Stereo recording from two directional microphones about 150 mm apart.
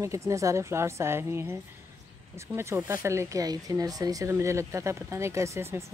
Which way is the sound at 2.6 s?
20° right (ahead or behind).